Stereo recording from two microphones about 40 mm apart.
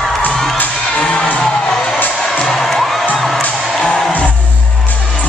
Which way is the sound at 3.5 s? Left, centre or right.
Centre.